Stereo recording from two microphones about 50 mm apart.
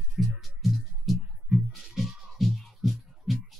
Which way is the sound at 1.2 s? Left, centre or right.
Right.